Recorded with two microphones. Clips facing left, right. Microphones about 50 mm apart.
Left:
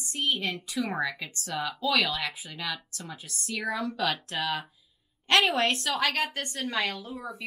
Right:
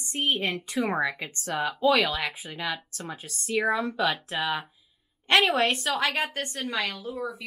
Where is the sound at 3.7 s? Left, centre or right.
Right.